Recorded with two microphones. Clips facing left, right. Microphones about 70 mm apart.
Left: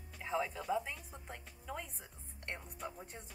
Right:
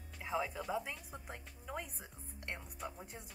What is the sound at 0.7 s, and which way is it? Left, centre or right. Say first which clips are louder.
Speech: left 2 dB; centre.